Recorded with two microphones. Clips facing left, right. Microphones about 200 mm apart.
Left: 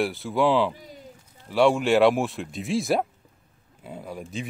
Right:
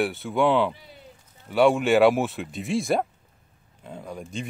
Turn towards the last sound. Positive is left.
turn(degrees=5)  # may be behind; listen again after turning